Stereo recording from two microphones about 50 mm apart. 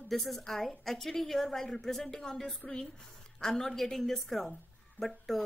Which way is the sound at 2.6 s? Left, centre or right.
Left.